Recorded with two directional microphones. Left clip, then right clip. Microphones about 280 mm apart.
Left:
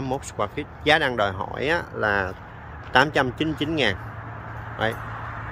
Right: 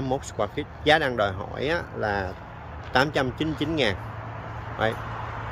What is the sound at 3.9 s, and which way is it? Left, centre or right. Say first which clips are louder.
Vehicle: even; right.